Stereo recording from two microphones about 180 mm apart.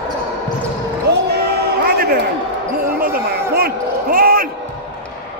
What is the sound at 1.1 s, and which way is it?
Basketball bounce, 65° right (ahead or behind).